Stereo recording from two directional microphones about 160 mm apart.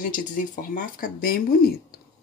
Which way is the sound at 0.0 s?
60° left (ahead or behind).